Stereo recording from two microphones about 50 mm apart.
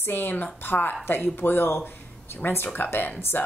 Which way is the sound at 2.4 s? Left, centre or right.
Left.